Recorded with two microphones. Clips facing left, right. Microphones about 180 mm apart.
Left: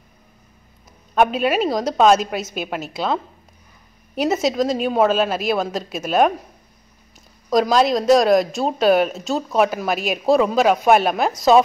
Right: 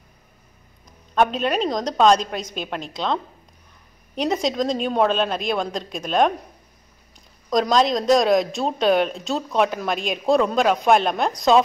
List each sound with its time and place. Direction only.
1.1 s a woman's voice: 10° left (ahead or behind)